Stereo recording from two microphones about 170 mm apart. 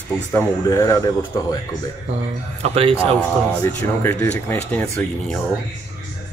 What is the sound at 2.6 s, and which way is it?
Speech, 35° right (ahead or behind).